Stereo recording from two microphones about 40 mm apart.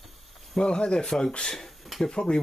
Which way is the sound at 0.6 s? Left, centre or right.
Left.